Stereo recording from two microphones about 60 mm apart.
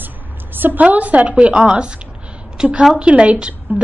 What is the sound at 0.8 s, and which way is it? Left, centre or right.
A woman's voice, right.